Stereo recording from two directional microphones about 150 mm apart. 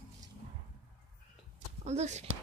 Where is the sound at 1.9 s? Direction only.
50° right (ahead or behind).